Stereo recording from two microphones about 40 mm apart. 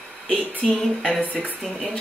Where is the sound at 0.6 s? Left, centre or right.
Centre.